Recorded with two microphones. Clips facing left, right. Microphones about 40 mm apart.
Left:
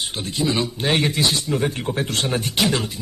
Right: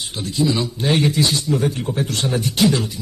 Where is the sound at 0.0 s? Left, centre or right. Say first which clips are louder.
Right 3 dB; left.